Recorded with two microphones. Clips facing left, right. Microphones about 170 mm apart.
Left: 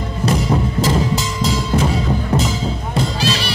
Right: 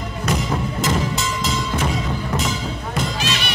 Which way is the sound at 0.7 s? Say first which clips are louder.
Left 4 dB; 30° left (ahead or behind).